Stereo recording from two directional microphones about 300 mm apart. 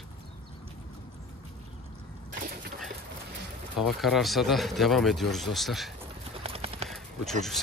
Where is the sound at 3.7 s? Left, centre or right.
Centre.